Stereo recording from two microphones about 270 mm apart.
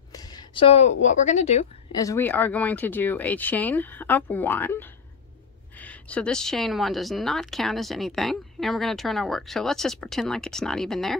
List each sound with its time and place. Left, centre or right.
0.1 s a sound: centre
1.0 s speech: left
2.0 s speech: centre